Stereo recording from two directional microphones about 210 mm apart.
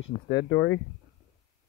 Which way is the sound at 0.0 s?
55° left (ahead or behind).